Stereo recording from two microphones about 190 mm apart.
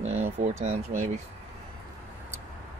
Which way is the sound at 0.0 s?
35° right (ahead or behind).